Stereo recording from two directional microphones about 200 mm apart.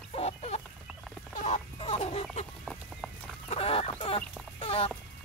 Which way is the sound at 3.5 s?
30° left (ahead or behind).